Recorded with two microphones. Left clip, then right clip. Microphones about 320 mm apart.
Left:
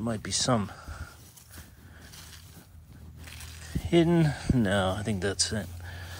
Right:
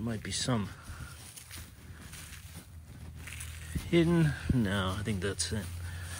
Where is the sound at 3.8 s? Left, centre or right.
Centre.